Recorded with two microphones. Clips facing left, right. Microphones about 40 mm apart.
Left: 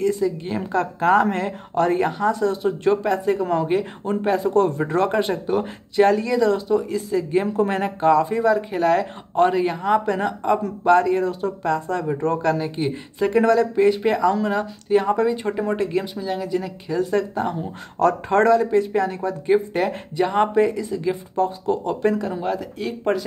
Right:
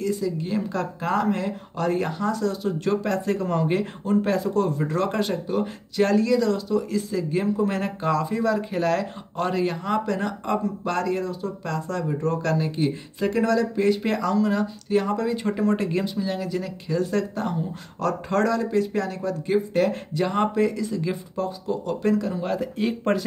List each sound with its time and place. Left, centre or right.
0.0 s speech: left
1.0 s speech: left
1.9 s speech: left
4.4 s speech: left; by 13.4 s centre
13.4 s speech: left
14.0 s speech: centre
14.3 s speech: left
15.2 s speech: centre
18.3 s speech: left
21.4 s speech: left
22.6 s speech: centre